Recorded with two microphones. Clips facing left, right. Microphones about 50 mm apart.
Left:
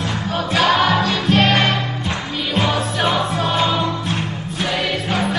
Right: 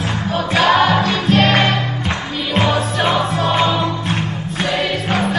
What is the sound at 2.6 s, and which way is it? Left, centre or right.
Music, right.